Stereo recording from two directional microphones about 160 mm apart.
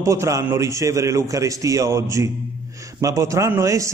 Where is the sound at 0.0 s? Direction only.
20° right (ahead or behind).